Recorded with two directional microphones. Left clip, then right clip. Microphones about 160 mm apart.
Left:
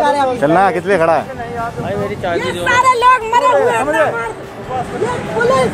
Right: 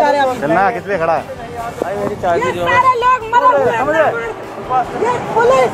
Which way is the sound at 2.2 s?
25° left (ahead or behind).